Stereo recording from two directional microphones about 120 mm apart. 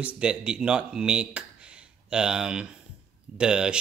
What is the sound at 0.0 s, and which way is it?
Speech, 10° right (ahead or behind).